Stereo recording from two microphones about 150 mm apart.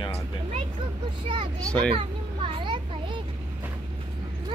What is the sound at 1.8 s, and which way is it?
Speech, 10° left (ahead or behind).